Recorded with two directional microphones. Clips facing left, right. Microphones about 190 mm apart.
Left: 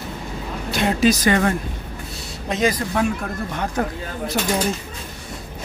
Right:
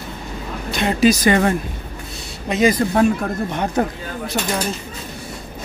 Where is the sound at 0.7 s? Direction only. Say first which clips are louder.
Right 2 dB; centre (ahead or behind).